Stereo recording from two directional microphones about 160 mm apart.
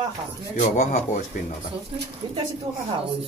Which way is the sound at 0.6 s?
50° left (ahead or behind).